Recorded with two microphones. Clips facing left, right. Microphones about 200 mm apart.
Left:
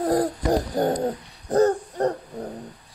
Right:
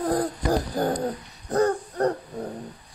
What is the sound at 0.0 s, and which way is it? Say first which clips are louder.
Hoot: left 3 dB; 25° left (ahead or behind).